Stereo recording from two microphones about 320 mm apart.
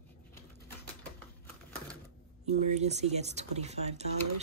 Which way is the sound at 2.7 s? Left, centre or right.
Right.